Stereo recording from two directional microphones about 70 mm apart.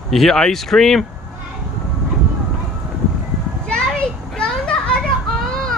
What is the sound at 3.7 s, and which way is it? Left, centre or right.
Children playing, centre.